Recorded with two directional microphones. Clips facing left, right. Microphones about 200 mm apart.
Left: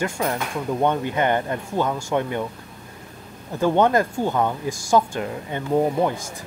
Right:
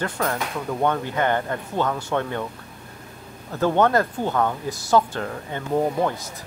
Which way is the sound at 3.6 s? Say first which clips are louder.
Left 1 dB; 15° left (ahead or behind).